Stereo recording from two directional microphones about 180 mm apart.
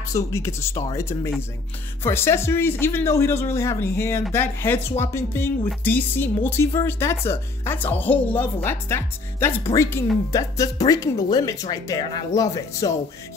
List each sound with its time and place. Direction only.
0.1 s speech: 15° left (ahead or behind)